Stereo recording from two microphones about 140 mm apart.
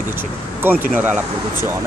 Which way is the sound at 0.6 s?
15° right (ahead or behind).